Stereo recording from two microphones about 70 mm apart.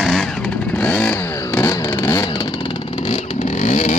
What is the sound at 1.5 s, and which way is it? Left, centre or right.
Vehicle, left.